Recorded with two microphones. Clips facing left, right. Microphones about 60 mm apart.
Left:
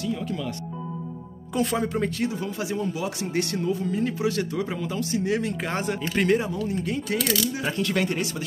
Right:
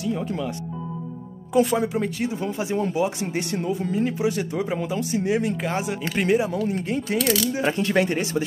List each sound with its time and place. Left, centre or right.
0.0 s speech: centre
1.5 s speech: centre
2.4 s speech: right
5.6 s speech: centre
6.8 s speech: right